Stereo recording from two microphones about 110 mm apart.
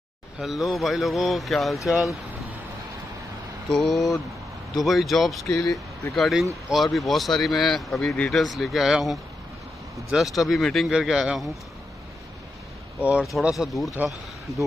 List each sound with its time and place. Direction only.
0.4 s speech: centre (ahead or behind)
3.6 s speech: 5° left (ahead or behind)
5.6 s speech: 30° left (ahead or behind)
6.1 s speech: centre (ahead or behind)
13.4 s speech: 5° right (ahead or behind)